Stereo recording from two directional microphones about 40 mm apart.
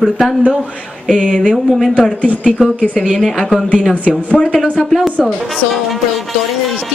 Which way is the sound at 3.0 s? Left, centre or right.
Centre.